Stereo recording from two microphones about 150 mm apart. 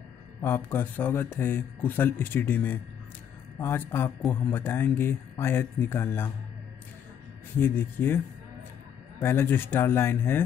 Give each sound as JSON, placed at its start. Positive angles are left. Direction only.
{"t": 0.4, "sound": "speech", "side_deg": 15}
{"t": 7.5, "sound": "speech", "side_deg": 15}
{"t": 9.2, "sound": "speech", "side_deg": 15}